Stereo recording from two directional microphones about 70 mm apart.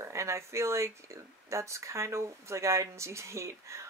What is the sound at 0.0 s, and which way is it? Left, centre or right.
Speech, right.